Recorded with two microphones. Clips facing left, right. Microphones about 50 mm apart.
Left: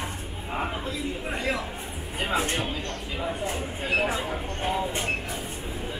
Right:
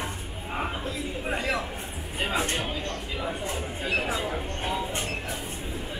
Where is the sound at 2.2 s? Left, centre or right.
Left.